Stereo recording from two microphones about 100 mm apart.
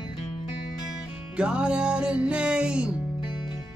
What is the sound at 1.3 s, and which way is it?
Music, 10° right (ahead or behind).